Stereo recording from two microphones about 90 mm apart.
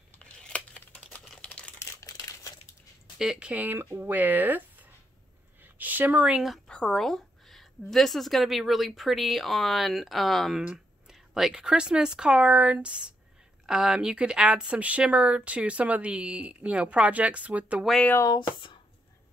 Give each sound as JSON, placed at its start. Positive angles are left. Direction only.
{"t": 0.1, "sound": "tearing", "side_deg": 10}
{"t": 1.4, "sound": "a sound", "side_deg": 15}
{"t": 1.8, "sound": "crumpling", "side_deg": 30}
{"t": 2.0, "sound": "crumpling", "side_deg": 45}
{"t": 3.2, "sound": "speech", "side_deg": -10}
{"t": 5.6, "sound": "a sound", "side_deg": -20}
{"t": 6.7, "sound": "a woman's voice", "side_deg": 10}
{"t": 10.6, "sound": "a sound", "side_deg": -15}
{"t": 11.1, "sound": "speech", "side_deg": -5}
{"t": 18.3, "sound": "speech", "side_deg": 60}